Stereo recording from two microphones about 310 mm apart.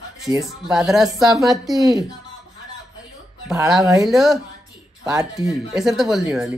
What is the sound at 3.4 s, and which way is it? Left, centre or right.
Speech, centre.